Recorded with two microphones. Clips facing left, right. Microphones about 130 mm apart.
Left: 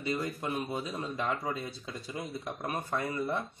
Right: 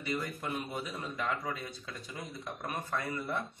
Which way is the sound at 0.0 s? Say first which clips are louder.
Left 3 dB; 25° left (ahead or behind).